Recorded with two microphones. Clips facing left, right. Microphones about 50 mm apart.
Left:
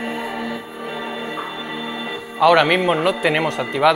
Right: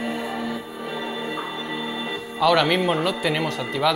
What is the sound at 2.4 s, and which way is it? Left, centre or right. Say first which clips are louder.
Speech: left 5 dB; left.